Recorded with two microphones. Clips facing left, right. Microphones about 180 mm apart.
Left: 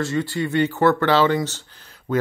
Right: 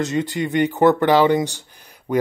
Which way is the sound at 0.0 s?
20° right (ahead or behind).